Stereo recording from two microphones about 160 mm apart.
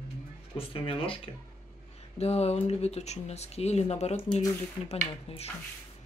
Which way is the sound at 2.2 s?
40° left (ahead or behind).